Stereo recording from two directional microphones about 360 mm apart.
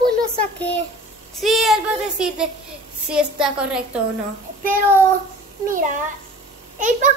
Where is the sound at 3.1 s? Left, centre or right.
Centre.